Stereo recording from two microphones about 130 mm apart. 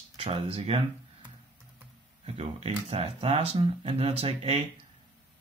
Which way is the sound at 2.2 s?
50° right (ahead or behind).